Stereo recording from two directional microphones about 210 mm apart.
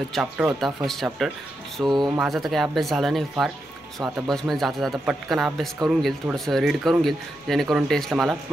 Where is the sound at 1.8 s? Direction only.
20° right (ahead or behind).